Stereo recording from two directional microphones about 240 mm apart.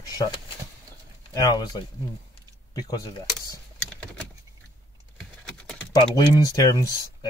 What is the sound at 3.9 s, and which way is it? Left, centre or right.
Vehicle, centre.